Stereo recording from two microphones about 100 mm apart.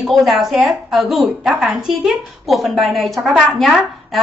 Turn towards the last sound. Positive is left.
turn(degrees=0)  # may be behind; listen again after turning